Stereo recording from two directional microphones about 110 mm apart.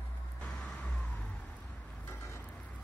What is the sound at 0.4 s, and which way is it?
Vehicle, 10° left (ahead or behind).